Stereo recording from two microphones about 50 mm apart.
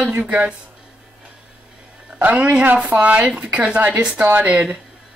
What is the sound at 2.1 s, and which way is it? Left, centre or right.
Speech, right.